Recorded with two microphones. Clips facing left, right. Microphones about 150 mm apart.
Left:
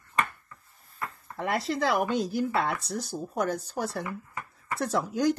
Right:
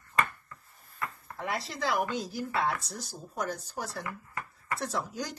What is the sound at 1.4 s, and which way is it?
Speech, 60° left (ahead or behind).